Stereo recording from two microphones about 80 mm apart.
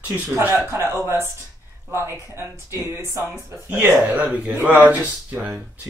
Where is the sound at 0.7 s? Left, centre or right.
Right.